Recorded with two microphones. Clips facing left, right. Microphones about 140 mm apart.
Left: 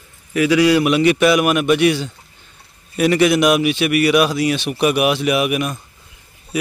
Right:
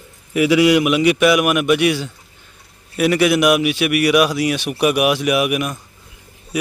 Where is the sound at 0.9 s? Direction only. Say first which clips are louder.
Even; 5° right (ahead or behind).